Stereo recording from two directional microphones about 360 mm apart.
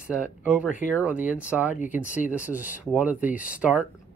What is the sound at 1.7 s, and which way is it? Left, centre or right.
Speech, left.